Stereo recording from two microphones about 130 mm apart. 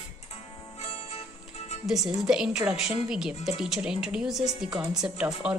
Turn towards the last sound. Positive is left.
turn(degrees=-5)  # may be behind; listen again after turning